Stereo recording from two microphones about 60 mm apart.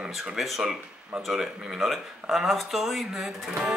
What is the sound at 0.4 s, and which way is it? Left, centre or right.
Speech, centre.